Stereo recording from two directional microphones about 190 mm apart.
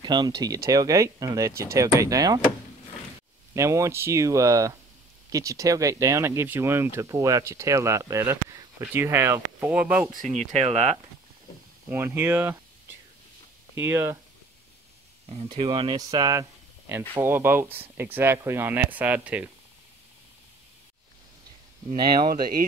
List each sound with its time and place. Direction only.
0.0 s speech: 25° right (ahead or behind)
3.5 s speech: 15° right (ahead or behind)
10.6 s speech: 35° right (ahead or behind)
11.9 s speech: 10° right (ahead or behind)
13.7 s speech: 15° right (ahead or behind)
15.2 s speech: 30° right (ahead or behind); by 19.4 s 5° right (ahead or behind)
21.9 s speech: 25° right (ahead or behind)